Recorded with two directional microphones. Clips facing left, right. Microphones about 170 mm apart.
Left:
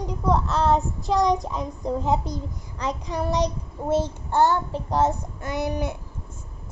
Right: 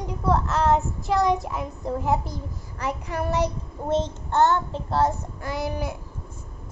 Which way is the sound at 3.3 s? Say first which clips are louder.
Even; 15° left (ahead or behind).